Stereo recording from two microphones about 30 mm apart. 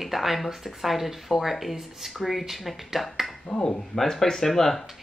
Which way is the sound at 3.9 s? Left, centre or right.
Centre.